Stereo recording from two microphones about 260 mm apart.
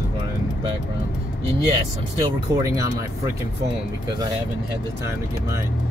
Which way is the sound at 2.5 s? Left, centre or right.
Centre.